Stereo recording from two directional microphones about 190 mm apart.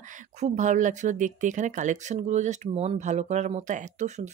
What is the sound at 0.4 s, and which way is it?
Speech, 40° right (ahead or behind).